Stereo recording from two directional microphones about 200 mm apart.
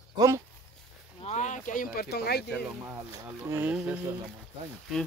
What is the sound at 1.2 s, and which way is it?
Speech, 35° left (ahead or behind).